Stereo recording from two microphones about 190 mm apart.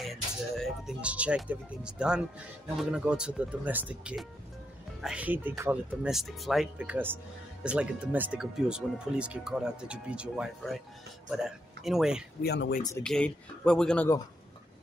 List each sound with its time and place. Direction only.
0.0 s speech: centre (ahead or behind)
12.4 s speech: 60° left (ahead or behind)
13.0 s speech: 5° left (ahead or behind)